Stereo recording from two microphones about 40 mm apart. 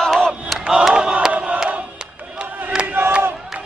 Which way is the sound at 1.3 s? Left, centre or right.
Right.